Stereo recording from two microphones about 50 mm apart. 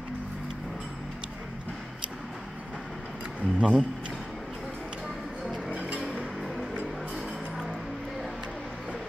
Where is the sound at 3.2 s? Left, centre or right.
Right.